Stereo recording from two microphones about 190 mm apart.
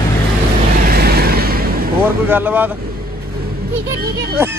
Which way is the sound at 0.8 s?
55° right (ahead or behind).